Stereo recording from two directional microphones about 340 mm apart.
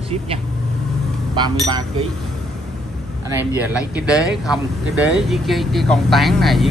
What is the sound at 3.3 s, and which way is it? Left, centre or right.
Speech, centre.